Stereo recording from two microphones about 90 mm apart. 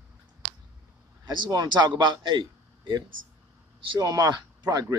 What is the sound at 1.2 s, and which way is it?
A man's voice, 55° right (ahead or behind).